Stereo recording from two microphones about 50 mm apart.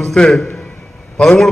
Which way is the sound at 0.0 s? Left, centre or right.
Centre.